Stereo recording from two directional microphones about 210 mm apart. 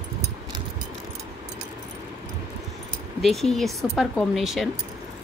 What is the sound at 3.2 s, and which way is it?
A woman's voice, centre (ahead or behind).